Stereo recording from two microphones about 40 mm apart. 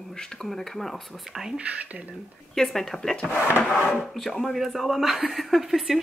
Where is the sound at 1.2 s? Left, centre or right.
Centre.